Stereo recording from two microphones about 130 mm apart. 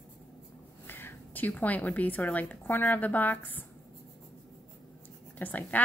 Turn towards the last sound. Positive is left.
turn(degrees=10)  # may be behind; listen again after turning